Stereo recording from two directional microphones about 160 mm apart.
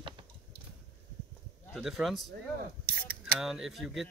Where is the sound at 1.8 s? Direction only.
Centre (ahead or behind).